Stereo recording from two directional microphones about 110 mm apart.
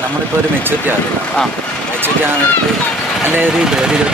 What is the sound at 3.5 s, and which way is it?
Speech, 5° right (ahead or behind).